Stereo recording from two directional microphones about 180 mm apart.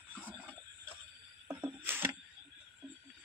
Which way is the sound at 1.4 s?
15° right (ahead or behind).